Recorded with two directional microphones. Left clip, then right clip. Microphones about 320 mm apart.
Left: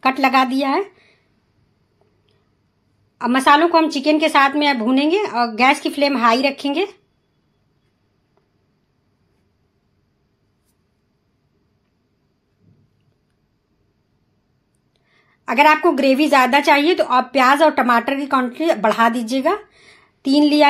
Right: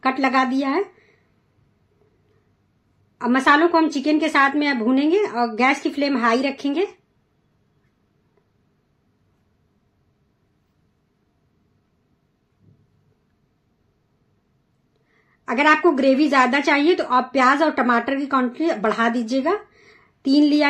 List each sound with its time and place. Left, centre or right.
0.0 s a woman's voice: centre
3.2 s a woman's voice: centre
15.4 s a woman's voice: centre